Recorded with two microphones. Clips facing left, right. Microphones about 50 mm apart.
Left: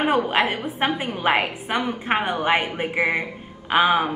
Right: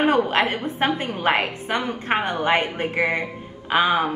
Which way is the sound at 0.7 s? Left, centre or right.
Centre.